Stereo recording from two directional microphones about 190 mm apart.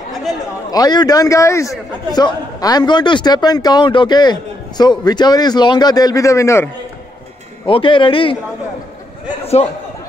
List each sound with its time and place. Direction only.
0.7 s a man's voice: 20° left (ahead or behind)
7.6 s a man's voice: 25° left (ahead or behind)
9.6 s speech: 30° left (ahead or behind)